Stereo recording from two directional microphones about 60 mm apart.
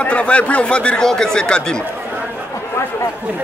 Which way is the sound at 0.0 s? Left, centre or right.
Left.